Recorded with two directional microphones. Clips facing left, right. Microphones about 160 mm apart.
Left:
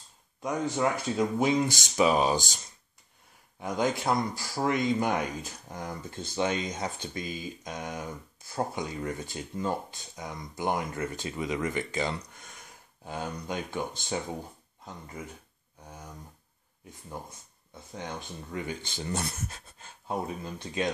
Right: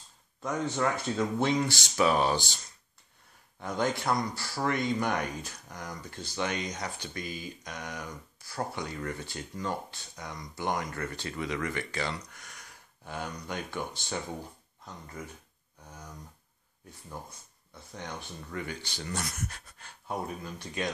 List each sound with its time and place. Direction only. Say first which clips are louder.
0.4 s speech: left 2 dB; 15° left (ahead or behind)
3.5 s speech: left 2 dB; 15° left (ahead or behind)
17.7 s speech: left 3 dB; 20° left (ahead or behind)